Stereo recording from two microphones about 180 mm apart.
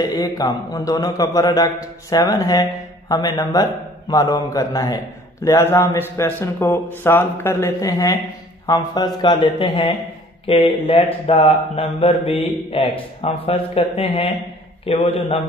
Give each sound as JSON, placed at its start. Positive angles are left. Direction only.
{"t": 0.0, "sound": "a man's voice", "side_deg": 20}